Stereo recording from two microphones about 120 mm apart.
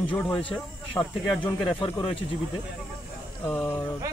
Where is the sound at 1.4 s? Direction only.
45° left (ahead or behind).